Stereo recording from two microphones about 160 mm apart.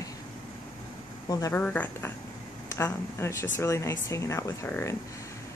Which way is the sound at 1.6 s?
10° left (ahead or behind).